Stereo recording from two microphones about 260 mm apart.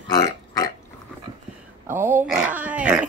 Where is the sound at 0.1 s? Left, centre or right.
Centre.